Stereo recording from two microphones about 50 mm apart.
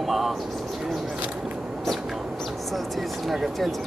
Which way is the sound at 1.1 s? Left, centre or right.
Right.